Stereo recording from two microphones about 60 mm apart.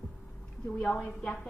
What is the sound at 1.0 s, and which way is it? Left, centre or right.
Speech, centre.